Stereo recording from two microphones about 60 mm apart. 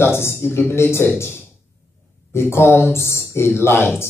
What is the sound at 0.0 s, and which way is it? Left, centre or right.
Speech, left.